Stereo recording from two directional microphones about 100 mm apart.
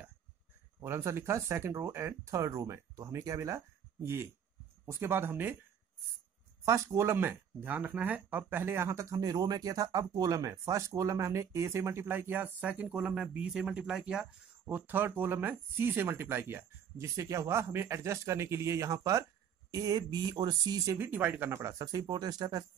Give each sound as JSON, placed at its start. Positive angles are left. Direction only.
{"t": 0.7, "sound": "speech", "side_deg": -25}
{"t": 6.6, "sound": "speech", "side_deg": -30}
{"t": 21.0, "sound": "speech", "side_deg": -20}
{"t": 21.8, "sound": "speech", "side_deg": -45}